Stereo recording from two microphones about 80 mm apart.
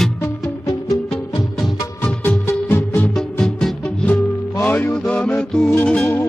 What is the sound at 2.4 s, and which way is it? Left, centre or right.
Music, left.